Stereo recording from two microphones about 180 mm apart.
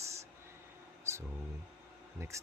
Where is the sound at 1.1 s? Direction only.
15° right (ahead or behind).